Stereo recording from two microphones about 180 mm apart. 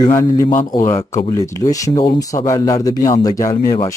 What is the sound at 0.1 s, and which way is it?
Speech, 15° left (ahead or behind).